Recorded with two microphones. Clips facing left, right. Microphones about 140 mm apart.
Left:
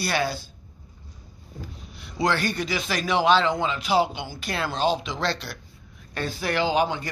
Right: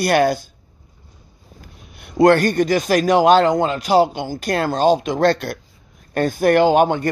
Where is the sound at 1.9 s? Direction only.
55° right (ahead or behind).